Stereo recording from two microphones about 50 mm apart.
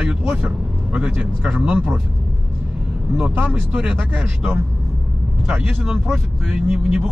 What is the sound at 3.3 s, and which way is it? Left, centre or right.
Speech, right.